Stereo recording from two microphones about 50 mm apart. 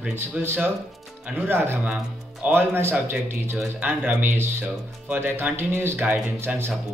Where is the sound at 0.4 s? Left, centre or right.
Right.